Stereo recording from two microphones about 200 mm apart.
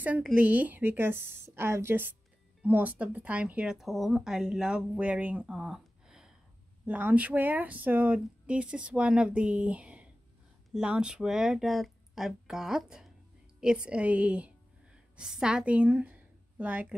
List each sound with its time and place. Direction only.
0.0 s a woman's voice: 5° right (ahead or behind)